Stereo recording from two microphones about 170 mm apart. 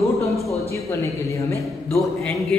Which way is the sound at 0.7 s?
15° left (ahead or behind).